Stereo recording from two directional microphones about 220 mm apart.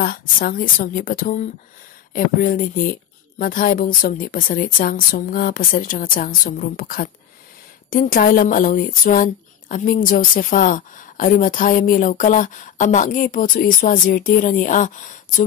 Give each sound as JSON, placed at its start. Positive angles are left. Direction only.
{"t": 0.0, "sound": "speech", "side_deg": 40}